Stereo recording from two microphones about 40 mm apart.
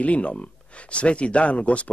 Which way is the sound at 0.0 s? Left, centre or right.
Left.